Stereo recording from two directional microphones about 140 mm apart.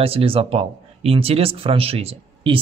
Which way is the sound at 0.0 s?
40° right (ahead or behind).